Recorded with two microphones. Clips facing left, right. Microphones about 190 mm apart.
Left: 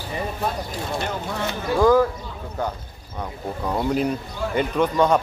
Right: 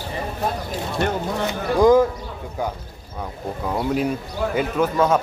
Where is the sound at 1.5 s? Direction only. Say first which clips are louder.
Right 2 dB; 20° right (ahead or behind).